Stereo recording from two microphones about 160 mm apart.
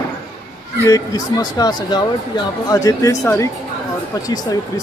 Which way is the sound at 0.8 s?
20° left (ahead or behind).